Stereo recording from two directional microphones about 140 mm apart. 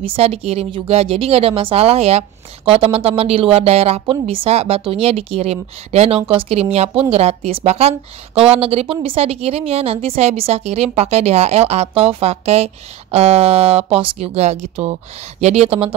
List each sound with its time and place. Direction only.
0.0 s speech: 45° right (ahead or behind)